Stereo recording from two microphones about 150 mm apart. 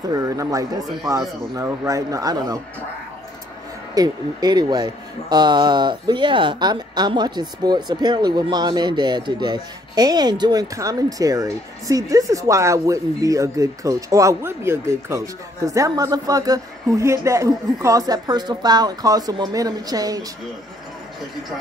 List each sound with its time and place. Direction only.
0.1 s speech: 20° right (ahead or behind)
3.9 s speech: 25° right (ahead or behind)